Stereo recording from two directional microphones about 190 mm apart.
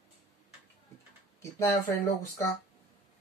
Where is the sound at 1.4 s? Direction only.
15° left (ahead or behind).